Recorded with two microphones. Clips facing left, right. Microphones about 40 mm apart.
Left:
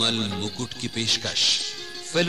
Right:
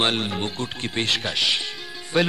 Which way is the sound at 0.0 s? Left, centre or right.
Centre.